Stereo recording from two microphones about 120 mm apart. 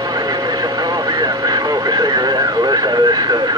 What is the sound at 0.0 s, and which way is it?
Vehicle, 35° right (ahead or behind).